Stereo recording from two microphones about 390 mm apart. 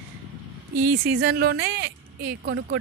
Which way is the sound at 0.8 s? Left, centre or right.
Right.